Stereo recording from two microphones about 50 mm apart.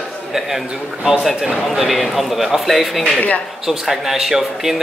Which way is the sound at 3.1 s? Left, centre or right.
Left.